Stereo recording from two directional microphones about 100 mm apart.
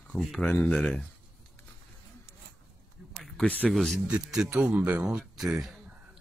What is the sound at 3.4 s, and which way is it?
Speech, 15° left (ahead or behind).